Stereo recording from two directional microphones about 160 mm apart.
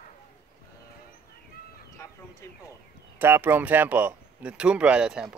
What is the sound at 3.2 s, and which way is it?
Speech, 15° right (ahead or behind).